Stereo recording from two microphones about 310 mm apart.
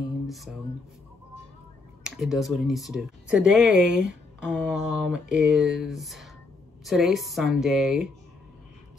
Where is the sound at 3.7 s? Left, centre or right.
Right.